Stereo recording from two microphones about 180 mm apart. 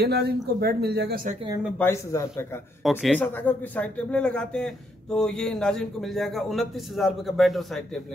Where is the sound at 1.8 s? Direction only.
15° left (ahead or behind).